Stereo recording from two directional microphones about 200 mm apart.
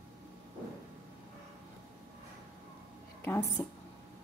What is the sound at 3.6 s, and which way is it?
Speech, 15° left (ahead or behind).